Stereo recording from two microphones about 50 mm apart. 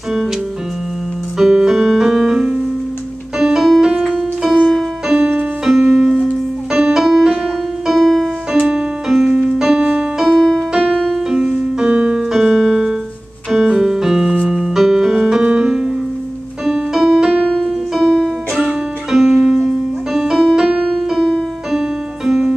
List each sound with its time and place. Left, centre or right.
1.4 s keyboard: centre
3.3 s piano: centre
4.4 s keyboard: centre
5.0 s music: centre
8.5 s keyboard: centre
9.3 s piano: centre
10.7 s music: centre
11.8 s keyboard: centre
16.6 s music: centre
17.5 s music: centre
17.9 s music: centre